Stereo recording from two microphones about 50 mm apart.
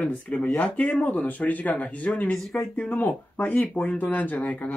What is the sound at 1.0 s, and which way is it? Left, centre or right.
Speech, left.